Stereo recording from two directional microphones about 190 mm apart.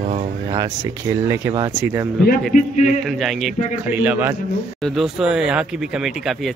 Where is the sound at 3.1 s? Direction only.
Centre (ahead or behind).